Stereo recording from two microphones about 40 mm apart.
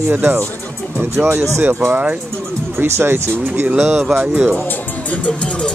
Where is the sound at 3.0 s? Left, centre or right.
Right.